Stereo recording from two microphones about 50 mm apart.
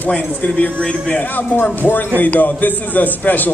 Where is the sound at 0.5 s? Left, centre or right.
Centre.